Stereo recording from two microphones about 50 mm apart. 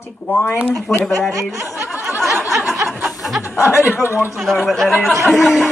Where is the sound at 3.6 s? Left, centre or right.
Left.